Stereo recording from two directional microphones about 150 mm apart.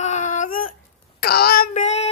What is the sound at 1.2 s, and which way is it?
Speech, 90° left.